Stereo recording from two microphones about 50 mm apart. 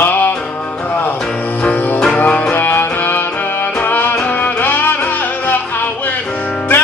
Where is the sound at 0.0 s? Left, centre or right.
Left.